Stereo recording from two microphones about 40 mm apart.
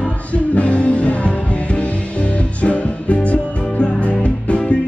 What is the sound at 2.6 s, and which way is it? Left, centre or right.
Music, left.